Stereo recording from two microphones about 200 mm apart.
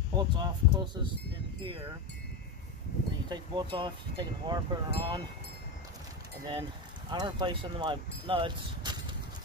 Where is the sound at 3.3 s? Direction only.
25° right (ahead or behind).